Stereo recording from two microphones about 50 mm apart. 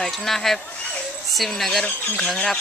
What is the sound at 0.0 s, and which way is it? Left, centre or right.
Speech, centre.